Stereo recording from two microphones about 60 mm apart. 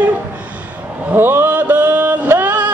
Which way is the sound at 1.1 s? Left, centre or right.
Right.